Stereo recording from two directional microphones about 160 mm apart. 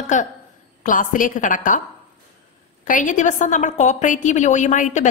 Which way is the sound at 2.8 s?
55° left (ahead or behind).